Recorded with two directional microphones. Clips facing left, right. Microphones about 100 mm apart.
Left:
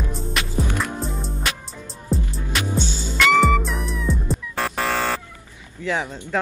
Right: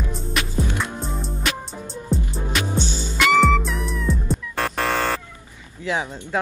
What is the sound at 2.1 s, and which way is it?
Music, centre (ahead or behind).